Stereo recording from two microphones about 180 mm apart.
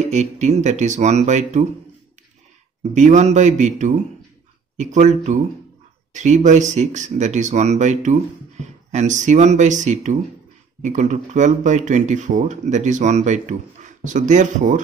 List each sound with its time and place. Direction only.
0.1 s speech: 40° right (ahead or behind)
2.8 s speech: 40° right (ahead or behind)